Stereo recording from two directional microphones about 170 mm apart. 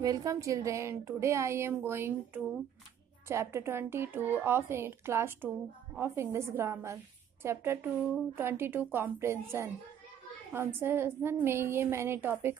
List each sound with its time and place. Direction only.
0.0 s a woman's voice: 20° right (ahead or behind)